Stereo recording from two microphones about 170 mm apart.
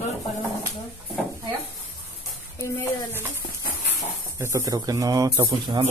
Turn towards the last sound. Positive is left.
turn(degrees=-25)  # may be behind; listen again after turning